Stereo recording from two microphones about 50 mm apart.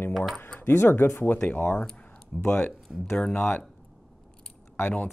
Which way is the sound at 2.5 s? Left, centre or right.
Left.